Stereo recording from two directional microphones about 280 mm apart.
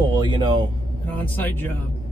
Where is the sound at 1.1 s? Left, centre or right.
Centre.